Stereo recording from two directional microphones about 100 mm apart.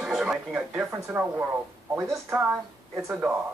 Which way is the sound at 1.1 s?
15° right (ahead or behind).